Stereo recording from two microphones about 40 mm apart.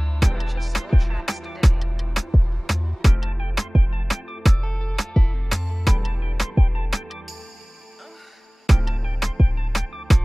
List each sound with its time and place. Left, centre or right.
0.2 s music: centre
4.6 s music: left
5.5 s music: centre
6.6 s music: centre
8.6 s music: centre